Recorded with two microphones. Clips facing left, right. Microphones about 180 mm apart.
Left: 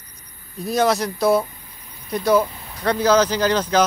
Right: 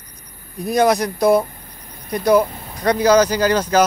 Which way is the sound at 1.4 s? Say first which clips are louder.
Right 4 dB; 55° right (ahead or behind).